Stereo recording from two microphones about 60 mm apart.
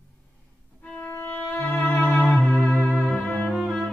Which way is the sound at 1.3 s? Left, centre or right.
Left.